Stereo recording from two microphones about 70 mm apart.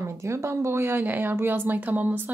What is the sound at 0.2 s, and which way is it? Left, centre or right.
A woman's voice, right.